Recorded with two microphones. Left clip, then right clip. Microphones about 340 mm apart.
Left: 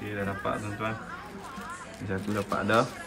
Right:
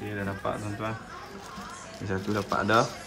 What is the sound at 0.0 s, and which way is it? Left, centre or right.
Speech, centre.